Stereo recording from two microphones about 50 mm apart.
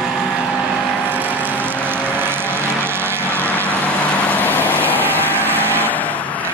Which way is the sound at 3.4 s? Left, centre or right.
Left.